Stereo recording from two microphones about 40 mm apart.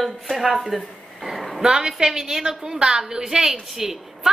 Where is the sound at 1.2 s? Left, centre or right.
Centre.